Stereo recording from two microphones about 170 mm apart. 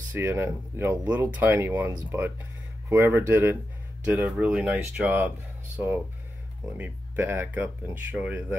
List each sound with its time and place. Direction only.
0.1 s speech: 15° right (ahead or behind)
6.8 s speech: 10° right (ahead or behind)